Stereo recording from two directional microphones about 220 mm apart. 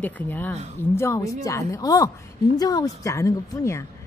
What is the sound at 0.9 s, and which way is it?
Speech, 10° left (ahead or behind).